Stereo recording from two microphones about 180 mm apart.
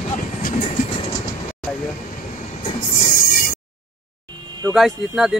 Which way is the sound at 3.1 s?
50° left (ahead or behind).